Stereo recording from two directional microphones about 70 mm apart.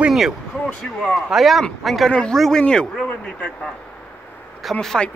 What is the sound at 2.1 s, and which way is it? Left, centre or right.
Speech, centre.